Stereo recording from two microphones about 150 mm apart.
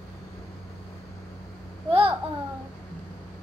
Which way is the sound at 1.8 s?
35° right (ahead or behind).